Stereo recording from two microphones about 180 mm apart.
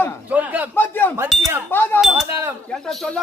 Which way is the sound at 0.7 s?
10° left (ahead or behind).